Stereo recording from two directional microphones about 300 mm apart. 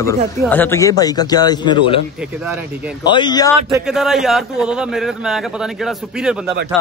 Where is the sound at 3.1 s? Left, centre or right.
Centre.